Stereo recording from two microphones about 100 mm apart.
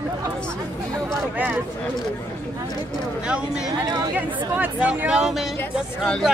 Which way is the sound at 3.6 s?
40° right (ahead or behind).